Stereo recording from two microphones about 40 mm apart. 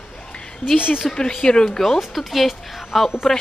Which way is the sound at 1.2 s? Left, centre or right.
Centre.